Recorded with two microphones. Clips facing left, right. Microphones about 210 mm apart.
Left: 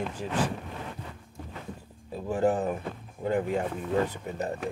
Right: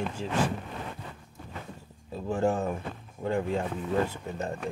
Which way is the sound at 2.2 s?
15° left (ahead or behind).